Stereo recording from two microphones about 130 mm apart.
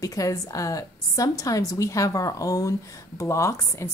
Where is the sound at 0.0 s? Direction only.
25° left (ahead or behind).